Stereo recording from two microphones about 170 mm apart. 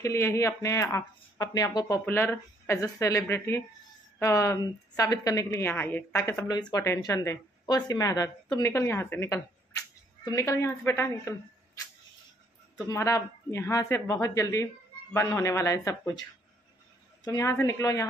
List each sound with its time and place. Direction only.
0.0 s speech: 15° left (ahead or behind)
2.0 s a woman's voice: 10° left (ahead or behind)
12.7 s speech: 20° left (ahead or behind)
17.2 s speech: 20° left (ahead or behind)